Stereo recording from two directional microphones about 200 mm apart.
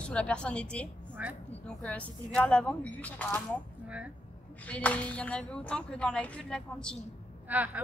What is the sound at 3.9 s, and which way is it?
Speech, 5° right (ahead or behind).